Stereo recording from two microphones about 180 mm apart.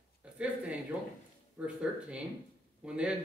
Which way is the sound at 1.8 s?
5° right (ahead or behind).